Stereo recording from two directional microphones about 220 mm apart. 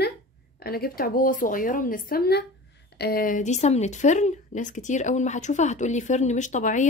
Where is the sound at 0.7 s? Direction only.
40° left (ahead or behind).